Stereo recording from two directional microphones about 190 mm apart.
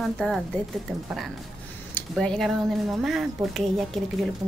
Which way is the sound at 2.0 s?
5° left (ahead or behind).